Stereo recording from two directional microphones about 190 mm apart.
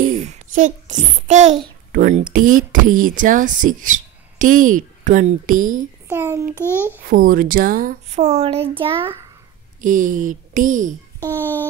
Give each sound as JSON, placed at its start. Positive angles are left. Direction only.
{"t": 0.0, "sound": "a child's voice", "side_deg": -35}
{"t": 6.0, "sound": "a child's voice", "side_deg": -10}
{"t": 7.1, "sound": "a child's voice", "side_deg": -50}
{"t": 9.8, "sound": "speech", "side_deg": -45}